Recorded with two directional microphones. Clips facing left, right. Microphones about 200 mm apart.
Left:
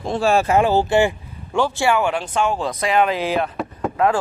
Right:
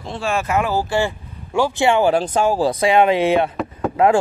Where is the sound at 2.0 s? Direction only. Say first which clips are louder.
Right 4 dB; 35° right (ahead or behind).